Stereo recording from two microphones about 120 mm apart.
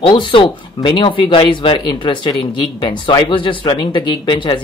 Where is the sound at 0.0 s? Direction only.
45° left (ahead or behind).